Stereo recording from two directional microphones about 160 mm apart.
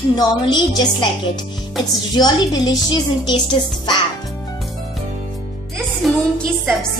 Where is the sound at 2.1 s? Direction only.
25° left (ahead or behind).